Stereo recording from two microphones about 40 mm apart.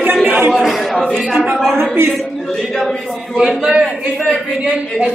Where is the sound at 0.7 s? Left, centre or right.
Centre.